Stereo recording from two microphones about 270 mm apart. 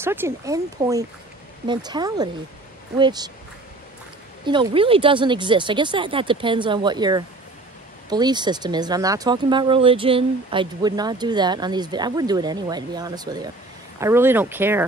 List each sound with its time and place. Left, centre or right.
0.0 s speech: centre
4.5 s speech: centre